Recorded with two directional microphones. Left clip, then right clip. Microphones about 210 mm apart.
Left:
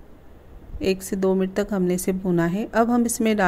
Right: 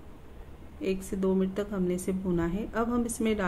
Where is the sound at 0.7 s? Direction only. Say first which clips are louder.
Left 8 dB; 40° left (ahead or behind).